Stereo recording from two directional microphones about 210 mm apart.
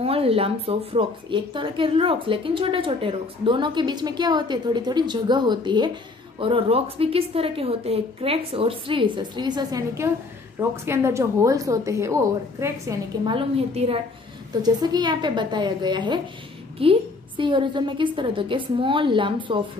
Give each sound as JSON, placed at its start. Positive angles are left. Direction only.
{"t": 0.0, "sound": "a woman's voice", "side_deg": -25}